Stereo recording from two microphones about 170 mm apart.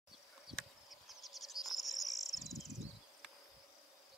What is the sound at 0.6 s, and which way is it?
Cricket, centre (ahead or behind).